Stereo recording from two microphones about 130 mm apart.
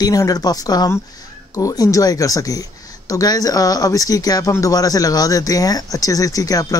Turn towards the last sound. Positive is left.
turn(degrees=25)  # may be behind; listen again after turning